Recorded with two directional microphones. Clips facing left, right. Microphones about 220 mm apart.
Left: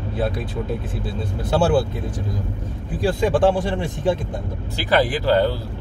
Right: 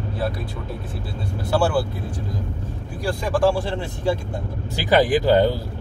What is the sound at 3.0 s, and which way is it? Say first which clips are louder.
Speech: left 3 dB; 20° left (ahead or behind).